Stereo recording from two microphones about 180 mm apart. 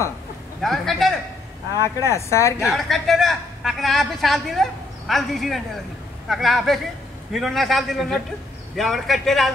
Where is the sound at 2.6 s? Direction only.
Centre (ahead or behind).